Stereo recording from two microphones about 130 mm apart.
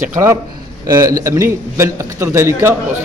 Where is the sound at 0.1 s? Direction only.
20° right (ahead or behind).